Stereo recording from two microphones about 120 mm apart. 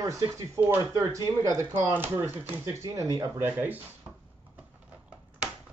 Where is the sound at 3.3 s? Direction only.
15° right (ahead or behind).